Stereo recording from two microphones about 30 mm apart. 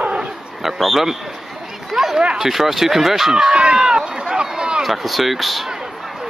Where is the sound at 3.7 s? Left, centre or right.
Right.